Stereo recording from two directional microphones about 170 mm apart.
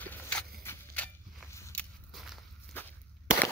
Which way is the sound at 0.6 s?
10° left (ahead or behind).